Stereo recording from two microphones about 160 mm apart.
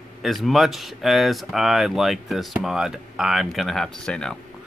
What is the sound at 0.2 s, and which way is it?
Speech, centre (ahead or behind).